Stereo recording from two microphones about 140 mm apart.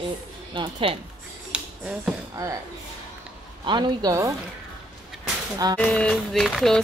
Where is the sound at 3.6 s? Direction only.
30° right (ahead or behind).